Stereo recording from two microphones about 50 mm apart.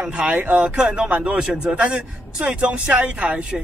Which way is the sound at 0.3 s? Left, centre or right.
Right.